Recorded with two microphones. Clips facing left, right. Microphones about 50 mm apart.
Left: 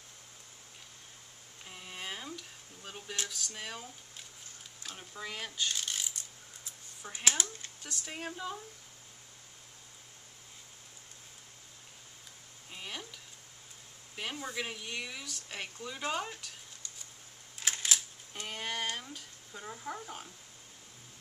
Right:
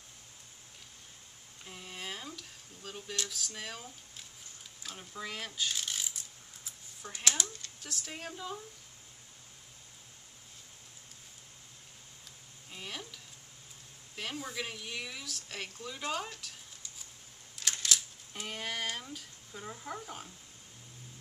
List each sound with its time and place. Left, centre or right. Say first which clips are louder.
1.6 s a sound: even; centre
3.3 s speech: even; centre
4.8 s coin: right 1 dB; centre
7.2 s speech: left 1 dB; left
7.8 s speech: left 2 dB; centre
12.7 s stir: even; centre
14.1 s speech: left 1 dB; centre
17.6 s camera: even; left
18.3 s speech: even; centre